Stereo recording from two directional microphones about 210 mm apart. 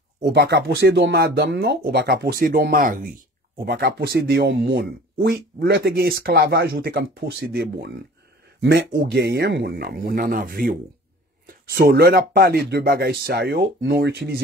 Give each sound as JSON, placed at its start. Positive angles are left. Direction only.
{"t": 0.2, "sound": "speech", "side_deg": -50}